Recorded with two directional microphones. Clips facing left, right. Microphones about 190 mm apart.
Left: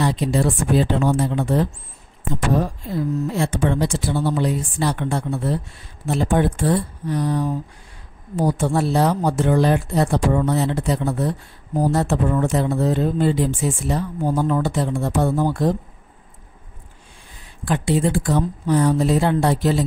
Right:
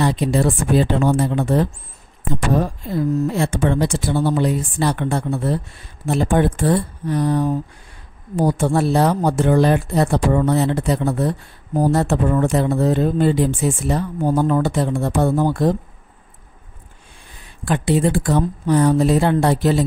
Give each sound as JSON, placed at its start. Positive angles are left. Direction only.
{"t": 0.0, "sound": "speech", "side_deg": -60}
{"t": 3.3, "sound": "speech", "side_deg": -55}
{"t": 17.6, "sound": "speech", "side_deg": -60}